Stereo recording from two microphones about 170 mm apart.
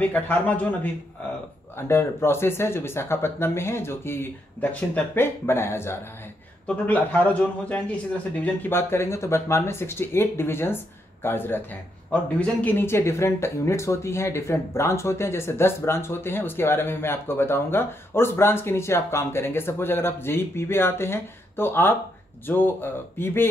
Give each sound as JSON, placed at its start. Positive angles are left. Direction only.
{"t": 0.0, "sound": "speech", "side_deg": 10}